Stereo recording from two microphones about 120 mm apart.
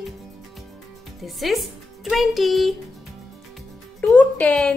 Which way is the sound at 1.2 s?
Centre (ahead or behind).